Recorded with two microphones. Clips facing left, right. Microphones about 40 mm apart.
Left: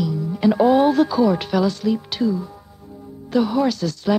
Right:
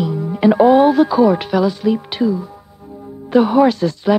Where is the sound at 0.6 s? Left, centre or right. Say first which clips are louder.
Right 4 dB; centre.